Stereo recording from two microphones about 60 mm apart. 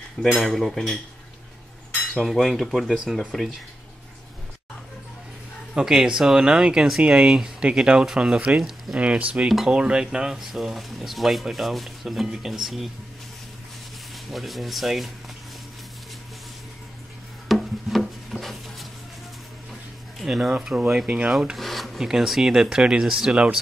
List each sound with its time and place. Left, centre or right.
0.2 s speech: centre
2.2 s speech: centre
5.8 s speech: centre
14.3 s speech: centre
17.5 s wood: centre
20.2 s speech: centre
23.3 s speech: centre